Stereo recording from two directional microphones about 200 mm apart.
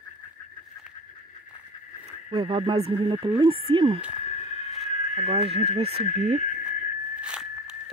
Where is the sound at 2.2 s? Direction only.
25° right (ahead or behind).